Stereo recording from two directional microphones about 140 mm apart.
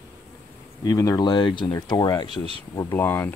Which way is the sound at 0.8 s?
25° left (ahead or behind).